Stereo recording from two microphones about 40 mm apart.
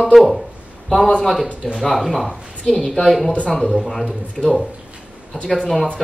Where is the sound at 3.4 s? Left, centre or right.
Left.